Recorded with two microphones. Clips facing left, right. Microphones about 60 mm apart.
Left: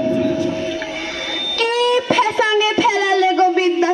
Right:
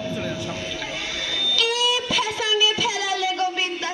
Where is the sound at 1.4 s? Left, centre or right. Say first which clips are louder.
Left 6 dB; left.